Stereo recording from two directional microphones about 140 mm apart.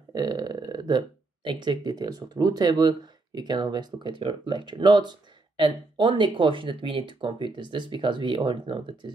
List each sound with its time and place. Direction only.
0.1 s speech: 30° right (ahead or behind)